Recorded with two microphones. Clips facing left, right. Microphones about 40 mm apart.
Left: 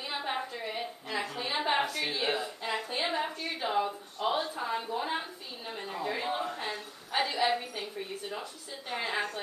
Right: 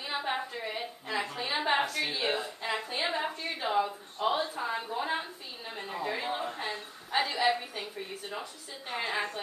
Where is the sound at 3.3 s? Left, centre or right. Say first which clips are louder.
Even; right.